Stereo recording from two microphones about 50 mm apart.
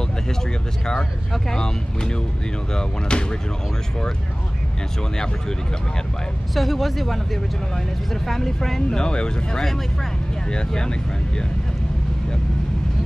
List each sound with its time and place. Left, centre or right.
0.8 s speech: centre
6.5 s speech: centre